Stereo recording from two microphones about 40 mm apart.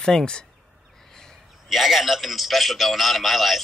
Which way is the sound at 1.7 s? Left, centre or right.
Centre.